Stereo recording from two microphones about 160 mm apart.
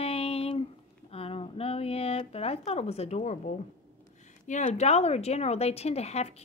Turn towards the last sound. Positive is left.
turn(degrees=40)  # may be behind; listen again after turning